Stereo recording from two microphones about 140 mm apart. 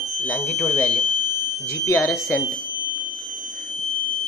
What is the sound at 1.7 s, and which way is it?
Speech, 20° left (ahead or behind).